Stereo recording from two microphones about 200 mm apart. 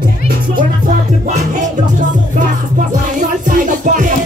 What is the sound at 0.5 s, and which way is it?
Music, 40° right (ahead or behind).